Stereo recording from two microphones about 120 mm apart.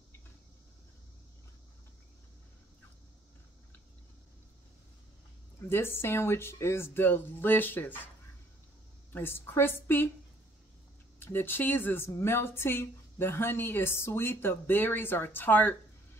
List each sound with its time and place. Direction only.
5.7 s speech: 20° left (ahead or behind)
9.1 s a woman's voice: 20° left (ahead or behind)
11.1 s a woman's voice: 20° left (ahead or behind)